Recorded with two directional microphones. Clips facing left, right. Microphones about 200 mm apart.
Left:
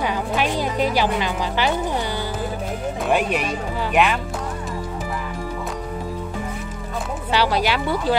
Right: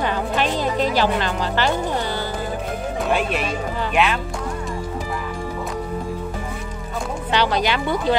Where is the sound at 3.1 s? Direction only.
15° left (ahead or behind).